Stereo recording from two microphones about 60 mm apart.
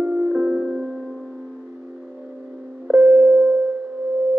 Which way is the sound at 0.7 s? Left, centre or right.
Centre.